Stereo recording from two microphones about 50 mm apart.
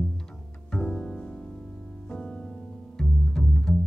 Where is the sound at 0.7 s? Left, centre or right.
Centre.